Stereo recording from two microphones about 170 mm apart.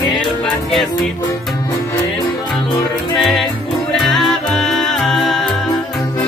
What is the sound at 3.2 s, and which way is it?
Music, centre (ahead or behind).